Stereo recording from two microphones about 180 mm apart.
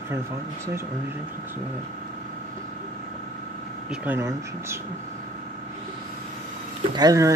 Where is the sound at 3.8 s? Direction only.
10° right (ahead or behind).